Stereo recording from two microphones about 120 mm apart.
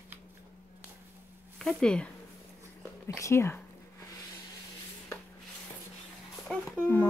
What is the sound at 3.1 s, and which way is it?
Speech, 25° left (ahead or behind).